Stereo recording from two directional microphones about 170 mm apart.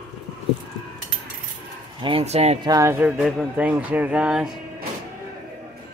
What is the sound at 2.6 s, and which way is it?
Speech, 20° right (ahead or behind).